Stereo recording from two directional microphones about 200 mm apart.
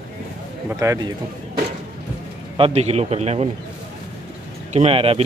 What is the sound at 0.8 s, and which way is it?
Speech, 15° right (ahead or behind).